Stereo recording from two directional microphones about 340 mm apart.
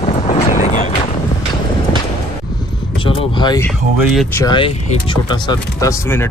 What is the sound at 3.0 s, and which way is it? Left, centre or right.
Vehicle, centre.